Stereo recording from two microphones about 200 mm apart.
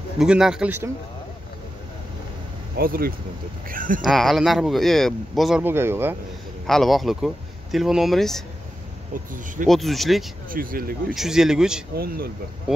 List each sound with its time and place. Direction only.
0.2 s speech: 5° right (ahead or behind)
2.8 s speech: 50° right (ahead or behind)
4.0 s speech: centre (ahead or behind)
6.7 s speech: centre (ahead or behind)
9.1 s speech: 40° right (ahead or behind)
9.7 s speech: centre (ahead or behind)
10.5 s speech: 45° right (ahead or behind)
11.1 s speech: centre (ahead or behind)
11.9 s speech: 50° right (ahead or behind)